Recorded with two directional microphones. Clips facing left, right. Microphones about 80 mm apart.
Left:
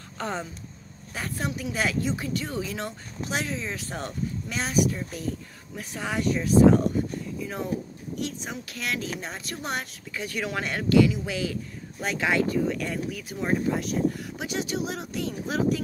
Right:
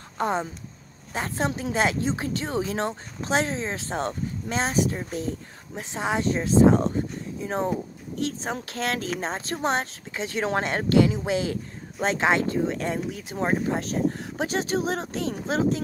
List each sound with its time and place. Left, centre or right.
0.2 s speech: right